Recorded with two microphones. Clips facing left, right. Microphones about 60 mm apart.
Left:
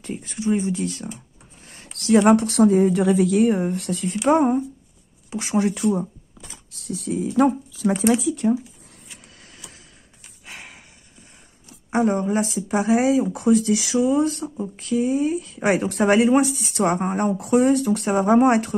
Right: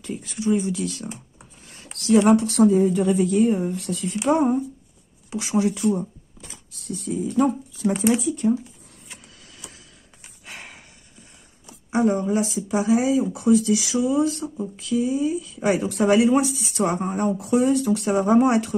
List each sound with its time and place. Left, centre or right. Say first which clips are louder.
0.0 s speech: even; left
1.7 s speech: left 1 dB; left
3.6 s speech: left 2 dB; left
4.1 s speech: left 2 dB; left
6.7 s speech: left 2 dB; left
9.4 s vehicle: even; left
10.4 s a sound: even; centre
12.1 s speech: even; left
17.0 s speech: left 1 dB; left
18.1 s speech: left 2 dB; left
18.5 s speech: left 2 dB; left